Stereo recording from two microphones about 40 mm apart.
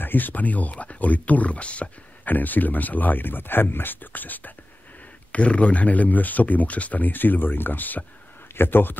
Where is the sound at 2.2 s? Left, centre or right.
Left.